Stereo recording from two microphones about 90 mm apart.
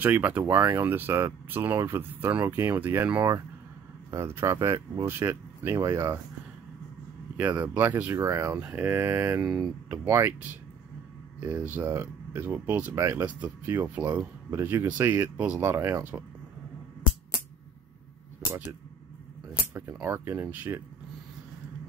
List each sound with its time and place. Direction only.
0.0 s speech: 20° right (ahead or behind)
0.6 s speech: 30° right (ahead or behind)
3.2 s speech: 40° right (ahead or behind)
5.0 s speech: 25° right (ahead or behind)
7.3 s speech: 20° right (ahead or behind); by 8.5 s 35° right (ahead or behind)
8.5 s speech: 20° right (ahead or behind)
9.4 s speech: 10° right (ahead or behind)
10.0 s speech: 25° right (ahead or behind)
13.2 s speech: 20° right (ahead or behind)
19.6 s speech: 30° right (ahead or behind)